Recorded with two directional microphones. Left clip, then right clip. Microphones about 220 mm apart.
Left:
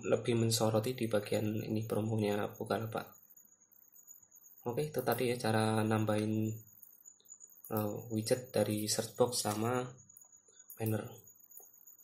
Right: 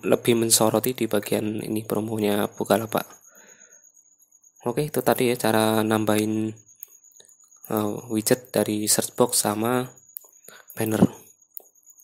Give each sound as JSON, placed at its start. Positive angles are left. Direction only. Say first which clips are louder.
{"t": 0.0, "sound": "speech", "louder": "right 12 dB", "side_deg": -40}
{"t": 4.6, "sound": "speech", "louder": "right 12 dB", "side_deg": -40}
{"t": 7.6, "sound": "speech", "louder": "right 11 dB", "side_deg": -40}
{"t": 10.7, "sound": "a sound", "louder": "right 12 dB", "side_deg": -45}